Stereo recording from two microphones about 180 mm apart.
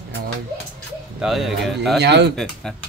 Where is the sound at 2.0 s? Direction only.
70° right (ahead or behind).